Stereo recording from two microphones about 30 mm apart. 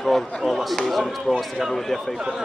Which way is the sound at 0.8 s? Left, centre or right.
Centre.